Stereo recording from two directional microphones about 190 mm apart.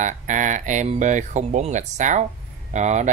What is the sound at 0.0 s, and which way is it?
Speech, 40° right (ahead or behind).